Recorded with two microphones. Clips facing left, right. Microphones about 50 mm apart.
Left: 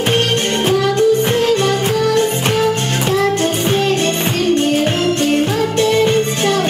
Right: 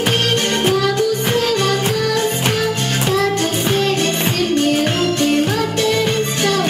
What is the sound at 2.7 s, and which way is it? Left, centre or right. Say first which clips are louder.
Music: left 2 dB; left.